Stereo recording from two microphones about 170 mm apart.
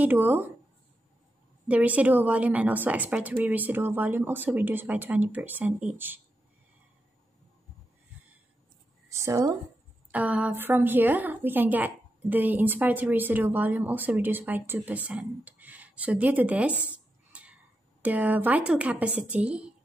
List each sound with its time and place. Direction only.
0.0 s a woman's voice: 10° right (ahead or behind)
1.7 s a woman's voice: 10° right (ahead or behind)
9.1 s a woman's voice: 15° right (ahead or behind)
10.1 s a woman's voice: 10° right (ahead or behind)
17.3 s cat: 10° right (ahead or behind)
18.0 s a woman's voice: 10° right (ahead or behind)